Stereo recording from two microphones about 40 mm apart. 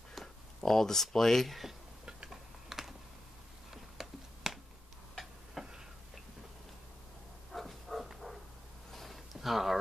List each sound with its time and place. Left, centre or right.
0.6 s speech: centre
2.2 s typing: centre
3.7 s a sound: centre
5.1 s tick-tock: centre
7.5 s dog: centre
8.9 s a sound: centre